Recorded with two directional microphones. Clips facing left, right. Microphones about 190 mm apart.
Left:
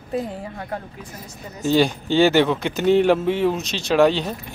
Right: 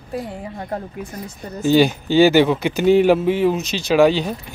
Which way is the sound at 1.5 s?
Centre (ahead or behind).